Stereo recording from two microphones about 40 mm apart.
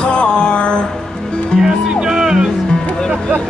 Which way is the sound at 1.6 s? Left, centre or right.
Centre.